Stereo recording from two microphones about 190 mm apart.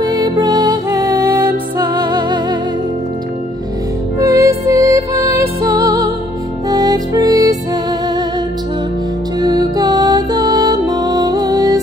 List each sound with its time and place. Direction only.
0.0 s music: 20° right (ahead or behind)
4.2 s music: 15° right (ahead or behind)
9.4 s music: 20° right (ahead or behind)